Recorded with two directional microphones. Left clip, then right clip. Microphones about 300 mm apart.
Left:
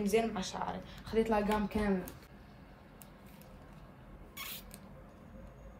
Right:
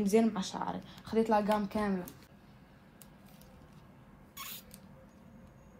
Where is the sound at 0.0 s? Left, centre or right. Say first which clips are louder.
Right 2 dB; centre.